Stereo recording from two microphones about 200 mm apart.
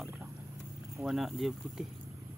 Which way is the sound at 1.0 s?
Centre (ahead or behind).